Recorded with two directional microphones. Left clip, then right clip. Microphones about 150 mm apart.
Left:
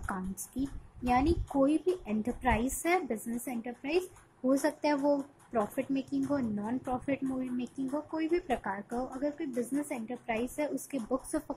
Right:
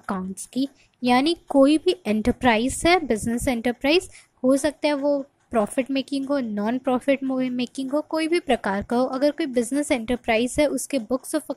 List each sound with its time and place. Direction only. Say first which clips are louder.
0.0 s a woman's voice: right 8 dB; 30° right (ahead or behind)
4.5 s speech: right 8 dB; 25° right (ahead or behind)
5.5 s speech: right 9 dB; 35° right (ahead or behind)
6.5 s speech: right 11 dB; 45° right (ahead or behind); by 11.5 s 25° right (ahead or behind)